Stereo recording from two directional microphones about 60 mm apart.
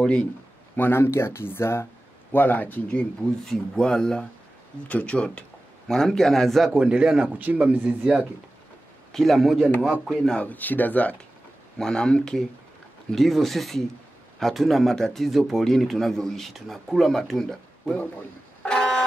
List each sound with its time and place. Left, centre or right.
0.7 s speech: left
2.3 s speech: left
2.9 s speech: centre
4.8 s speech: left
5.9 s speech: centre
6.7 s speech: centre
9.1 s speech: centre
10.0 s speech: centre
10.4 s speech: left
11.8 s speech: centre
13.1 s speech: centre
18.6 s vehicle: centre